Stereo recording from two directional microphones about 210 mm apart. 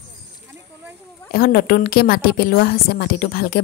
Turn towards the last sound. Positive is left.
turn(degrees=45)  # may be behind; listen again after turning